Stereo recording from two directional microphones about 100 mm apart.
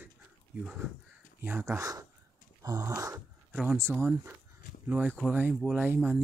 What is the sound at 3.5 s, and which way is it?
Speech, 5° right (ahead or behind).